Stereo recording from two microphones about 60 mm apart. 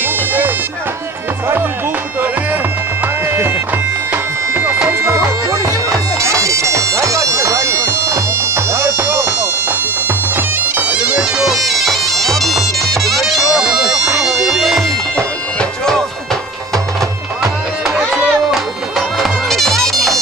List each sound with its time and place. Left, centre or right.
3.3 s music: right
4.8 s bagpipes: right
11.3 s bagpipes: centre
18.5 s bagpipes: centre